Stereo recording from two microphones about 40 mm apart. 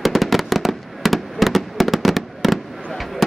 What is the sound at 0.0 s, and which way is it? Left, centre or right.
Fireworks, centre.